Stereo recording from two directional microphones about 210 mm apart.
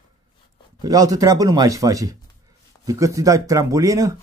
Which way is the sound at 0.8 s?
15° right (ahead or behind).